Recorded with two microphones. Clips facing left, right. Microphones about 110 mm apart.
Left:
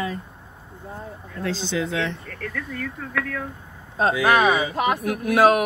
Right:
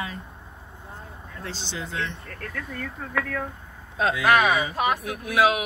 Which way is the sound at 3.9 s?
35° left (ahead or behind).